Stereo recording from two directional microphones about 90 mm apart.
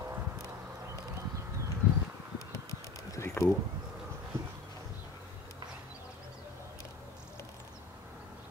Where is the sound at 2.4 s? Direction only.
35° left (ahead or behind).